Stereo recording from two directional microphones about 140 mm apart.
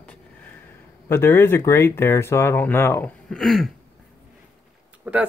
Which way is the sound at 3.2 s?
Centre (ahead or behind).